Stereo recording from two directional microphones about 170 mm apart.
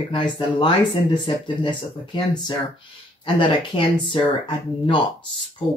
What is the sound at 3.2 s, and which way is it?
Speech, 30° left (ahead or behind).